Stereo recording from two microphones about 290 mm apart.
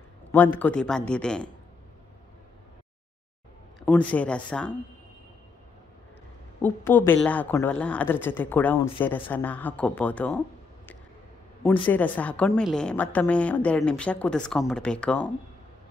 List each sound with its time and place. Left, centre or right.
0.3 s a woman's voice: centre
3.8 s a woman's voice: centre
6.6 s a woman's voice: centre
11.6 s a woman's voice: centre